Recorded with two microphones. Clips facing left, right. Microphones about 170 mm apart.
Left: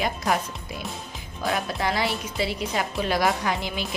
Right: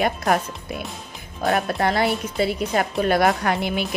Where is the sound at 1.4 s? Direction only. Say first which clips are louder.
Right 5 dB; 50° right (ahead or behind).